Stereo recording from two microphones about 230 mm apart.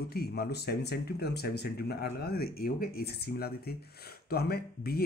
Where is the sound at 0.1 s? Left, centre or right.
Left.